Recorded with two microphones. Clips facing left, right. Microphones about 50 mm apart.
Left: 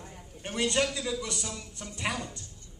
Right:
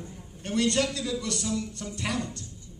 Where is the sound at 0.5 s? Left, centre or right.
Centre.